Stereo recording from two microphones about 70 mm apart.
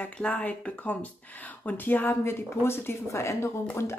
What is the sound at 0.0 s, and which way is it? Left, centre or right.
Speech, centre.